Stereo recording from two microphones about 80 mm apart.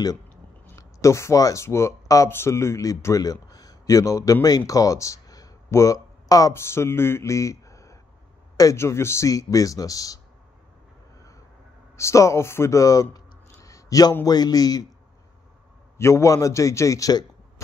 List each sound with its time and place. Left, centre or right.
0.7 s speech: left
6.5 s speech: left
12.0 s speech: left
16.0 s speech: left